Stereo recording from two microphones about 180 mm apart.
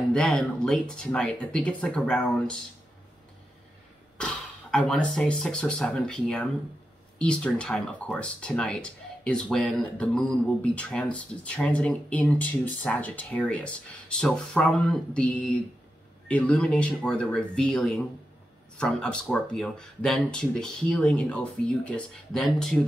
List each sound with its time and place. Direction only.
0.1 s speech: 5° left (ahead or behind)
4.2 s speech: 5° left (ahead or behind)